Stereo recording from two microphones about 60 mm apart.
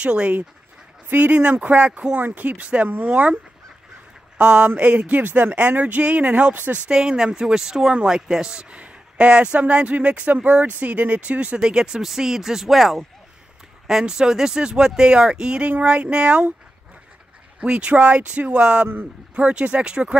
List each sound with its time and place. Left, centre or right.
0.0 s speech: centre
2.1 s speech: right
4.4 s speech: right
6.9 s speech: centre
17.6 s speech: centre